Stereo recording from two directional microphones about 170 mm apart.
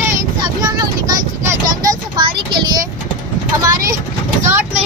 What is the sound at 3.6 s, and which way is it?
Speech, 20° right (ahead or behind).